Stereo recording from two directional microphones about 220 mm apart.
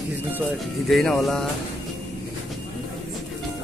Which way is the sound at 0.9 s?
Centre (ahead or behind).